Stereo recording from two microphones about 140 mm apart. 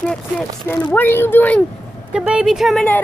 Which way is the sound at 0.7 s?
10° left (ahead or behind).